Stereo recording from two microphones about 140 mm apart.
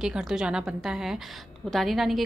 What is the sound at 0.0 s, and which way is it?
A woman's voice, 5° right (ahead or behind).